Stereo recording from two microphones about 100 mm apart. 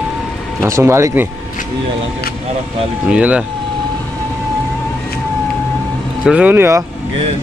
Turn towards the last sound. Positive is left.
turn(degrees=-30)  # may be behind; listen again after turning